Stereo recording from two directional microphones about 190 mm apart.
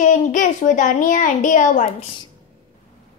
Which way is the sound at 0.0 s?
40° left (ahead or behind).